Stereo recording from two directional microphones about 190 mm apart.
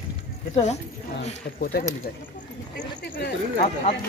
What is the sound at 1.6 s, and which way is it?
Speech, 55° left (ahead or behind).